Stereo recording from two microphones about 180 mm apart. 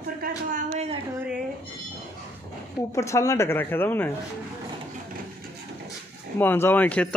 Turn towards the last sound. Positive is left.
turn(degrees=10)  # may be behind; listen again after turning